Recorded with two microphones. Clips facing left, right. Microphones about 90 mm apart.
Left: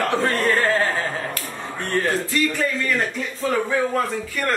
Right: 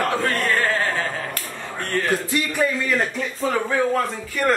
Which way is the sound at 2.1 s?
15° right (ahead or behind).